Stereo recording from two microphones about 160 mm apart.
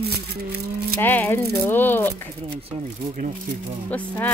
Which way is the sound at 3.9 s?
10° left (ahead or behind).